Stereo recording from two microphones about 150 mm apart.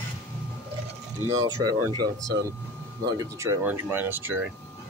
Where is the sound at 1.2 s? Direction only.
25° right (ahead or behind).